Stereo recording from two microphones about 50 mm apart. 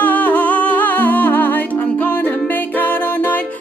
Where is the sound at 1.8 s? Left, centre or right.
Left.